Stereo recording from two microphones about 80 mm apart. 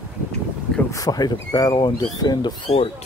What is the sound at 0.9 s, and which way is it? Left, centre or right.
Speech, left.